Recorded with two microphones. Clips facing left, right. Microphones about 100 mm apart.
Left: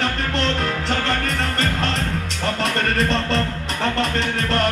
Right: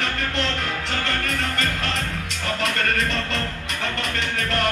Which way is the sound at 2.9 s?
35° left (ahead or behind).